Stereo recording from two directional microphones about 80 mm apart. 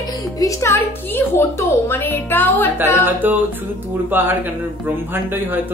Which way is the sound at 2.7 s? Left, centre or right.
Right.